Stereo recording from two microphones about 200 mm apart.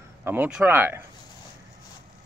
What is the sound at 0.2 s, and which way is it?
Speech, 10° right (ahead or behind).